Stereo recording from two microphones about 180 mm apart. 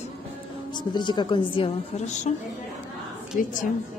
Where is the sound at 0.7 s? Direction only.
25° left (ahead or behind); by 2.3 s 40° left (ahead or behind).